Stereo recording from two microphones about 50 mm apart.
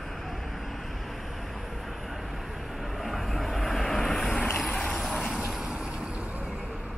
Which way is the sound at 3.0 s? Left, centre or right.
Centre.